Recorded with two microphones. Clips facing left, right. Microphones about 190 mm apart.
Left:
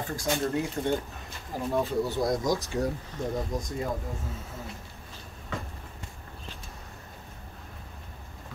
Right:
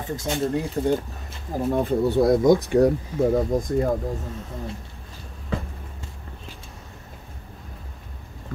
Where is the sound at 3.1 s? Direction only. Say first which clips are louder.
Right 12 dB; 10° right (ahead or behind).